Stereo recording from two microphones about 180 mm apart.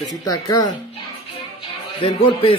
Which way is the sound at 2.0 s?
30° left (ahead or behind).